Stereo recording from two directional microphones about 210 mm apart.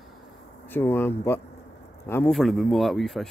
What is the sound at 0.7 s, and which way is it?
Speech, 10° left (ahead or behind).